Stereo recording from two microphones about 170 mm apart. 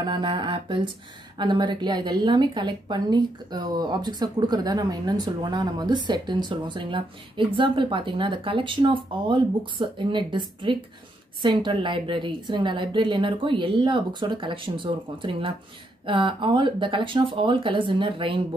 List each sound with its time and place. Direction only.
0.0 s a woman's voice: 30° right (ahead or behind)